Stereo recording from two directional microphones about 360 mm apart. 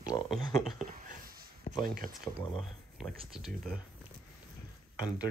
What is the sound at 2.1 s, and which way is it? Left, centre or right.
Speech, centre.